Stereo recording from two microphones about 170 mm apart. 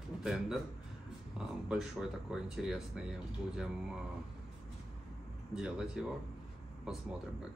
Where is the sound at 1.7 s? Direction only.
5° right (ahead or behind).